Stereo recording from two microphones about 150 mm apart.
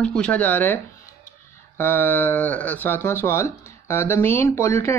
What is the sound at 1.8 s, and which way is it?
Speech, 15° left (ahead or behind).